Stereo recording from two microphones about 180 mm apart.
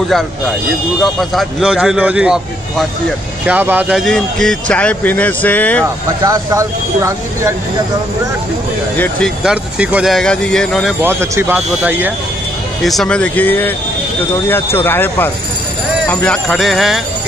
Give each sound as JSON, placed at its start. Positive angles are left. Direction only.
{"t": 1.0, "sound": "speech", "side_deg": 0}
{"t": 6.2, "sound": "speech", "side_deg": -15}
{"t": 8.9, "sound": "speech", "side_deg": 10}
{"t": 9.4, "sound": "speech", "side_deg": -5}
{"t": 11.0, "sound": "speech", "side_deg": -15}
{"t": 12.8, "sound": "speech", "side_deg": 0}